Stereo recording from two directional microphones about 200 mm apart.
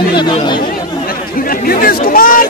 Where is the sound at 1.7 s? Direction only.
50° left (ahead or behind).